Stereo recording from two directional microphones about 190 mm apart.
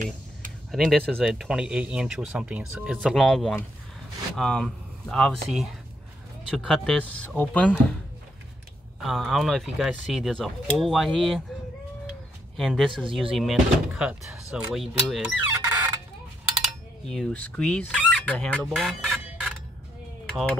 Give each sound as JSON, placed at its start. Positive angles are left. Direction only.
{"t": 0.7, "sound": "speech", "side_deg": 0}
{"t": 9.0, "sound": "speech", "side_deg": 0}
{"t": 12.5, "sound": "speech", "side_deg": 0}
{"t": 15.5, "sound": "fowl", "side_deg": -15}
{"t": 17.1, "sound": "speech", "side_deg": 5}